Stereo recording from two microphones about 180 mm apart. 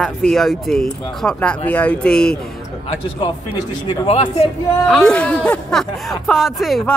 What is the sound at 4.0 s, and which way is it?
Speech, 35° left (ahead or behind).